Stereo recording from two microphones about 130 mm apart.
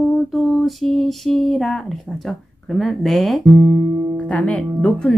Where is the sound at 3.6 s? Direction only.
25° right (ahead or behind).